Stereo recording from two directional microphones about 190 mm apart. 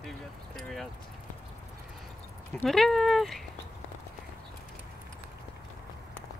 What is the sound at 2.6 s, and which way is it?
Speech, centre (ahead or behind).